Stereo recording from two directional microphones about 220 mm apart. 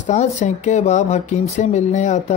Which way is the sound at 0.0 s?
30° left (ahead or behind).